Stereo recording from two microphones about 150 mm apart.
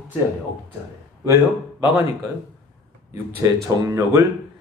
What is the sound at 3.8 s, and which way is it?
Speech, 15° right (ahead or behind).